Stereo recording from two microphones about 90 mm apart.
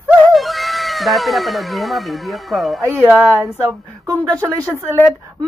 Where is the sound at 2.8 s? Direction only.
30° right (ahead or behind).